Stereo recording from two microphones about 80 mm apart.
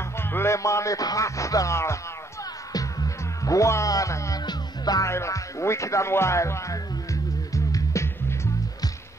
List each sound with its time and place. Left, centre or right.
0.2 s speech: left
2.7 s music: left
4.5 s music: left
5.0 s speech: left
7.5 s music: left